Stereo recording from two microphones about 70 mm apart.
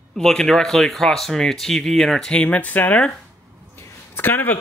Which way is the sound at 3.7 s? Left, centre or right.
Left.